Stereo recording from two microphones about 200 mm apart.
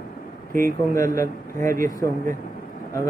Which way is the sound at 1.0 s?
15° left (ahead or behind).